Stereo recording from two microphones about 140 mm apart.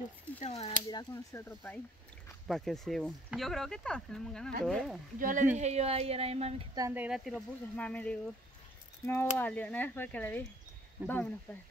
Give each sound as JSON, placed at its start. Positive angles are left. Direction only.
{"t": 0.4, "sound": "a sound", "side_deg": 50}
{"t": 0.8, "sound": "speech", "side_deg": 25}
{"t": 2.2, "sound": "speech", "side_deg": 0}
{"t": 5.2, "sound": "speech", "side_deg": -65}
{"t": 5.6, "sound": "speech", "side_deg": -50}
{"t": 6.9, "sound": "speech", "side_deg": -10}